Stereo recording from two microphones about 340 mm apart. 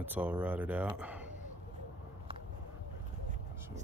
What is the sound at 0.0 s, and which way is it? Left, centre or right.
Speech, centre.